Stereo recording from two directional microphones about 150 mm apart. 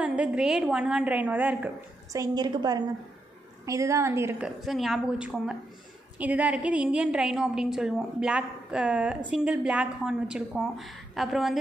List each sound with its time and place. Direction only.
0.0 s a woman's voice: 10° right (ahead or behind)
2.1 s a woman's voice: 25° right (ahead or behind)
4.6 s a woman's voice: centre (ahead or behind)